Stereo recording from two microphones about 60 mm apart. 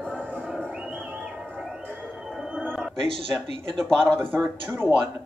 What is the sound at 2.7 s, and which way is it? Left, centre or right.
Music, centre.